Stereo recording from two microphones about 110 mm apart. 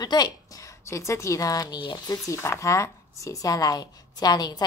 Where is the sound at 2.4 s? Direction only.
25° left (ahead or behind).